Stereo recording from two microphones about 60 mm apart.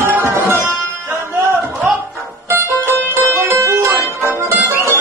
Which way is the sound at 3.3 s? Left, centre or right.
Right.